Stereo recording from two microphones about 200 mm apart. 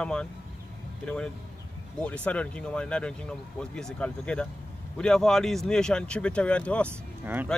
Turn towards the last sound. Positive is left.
turn(degrees=-10)  # may be behind; listen again after turning